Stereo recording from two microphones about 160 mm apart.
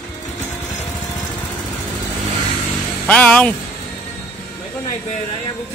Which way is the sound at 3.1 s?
10° left (ahead or behind).